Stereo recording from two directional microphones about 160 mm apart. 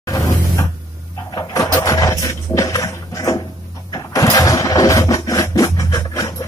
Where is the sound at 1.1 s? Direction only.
20° left (ahead or behind).